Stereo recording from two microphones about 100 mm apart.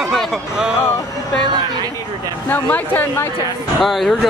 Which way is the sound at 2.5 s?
20° left (ahead or behind).